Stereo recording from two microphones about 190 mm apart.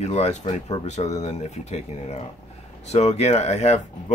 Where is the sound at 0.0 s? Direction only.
35° left (ahead or behind).